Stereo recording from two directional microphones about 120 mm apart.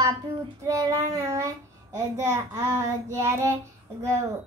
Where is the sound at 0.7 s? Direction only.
25° right (ahead or behind).